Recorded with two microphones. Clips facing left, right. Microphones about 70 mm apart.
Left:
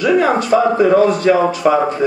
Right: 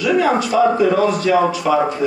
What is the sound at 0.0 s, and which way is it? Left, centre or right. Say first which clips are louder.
Speech: left 2 dB; left.